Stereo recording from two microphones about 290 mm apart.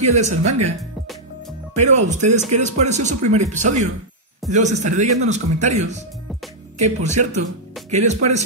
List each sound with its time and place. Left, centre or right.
0.0 s speech: right
1.8 s speech: right